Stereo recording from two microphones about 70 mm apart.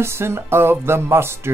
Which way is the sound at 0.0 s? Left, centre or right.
Right.